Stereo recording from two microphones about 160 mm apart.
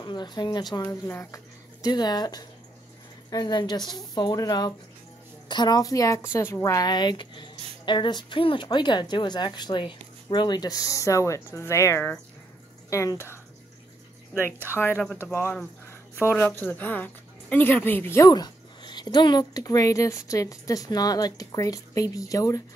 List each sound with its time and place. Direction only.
0.0 s a woman's voice: 30° left (ahead or behind)
14.8 s a woman's voice: 10° left (ahead or behind)